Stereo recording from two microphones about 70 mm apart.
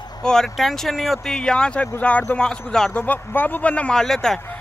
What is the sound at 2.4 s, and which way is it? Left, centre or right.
Speech, centre.